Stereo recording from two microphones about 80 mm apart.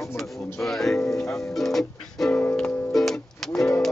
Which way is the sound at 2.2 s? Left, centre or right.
Left.